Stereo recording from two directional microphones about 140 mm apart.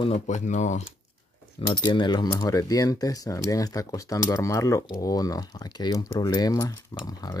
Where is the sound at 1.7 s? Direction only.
35° left (ahead or behind).